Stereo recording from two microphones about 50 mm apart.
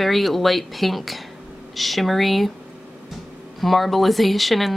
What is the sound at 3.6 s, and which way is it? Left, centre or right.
Speech, centre.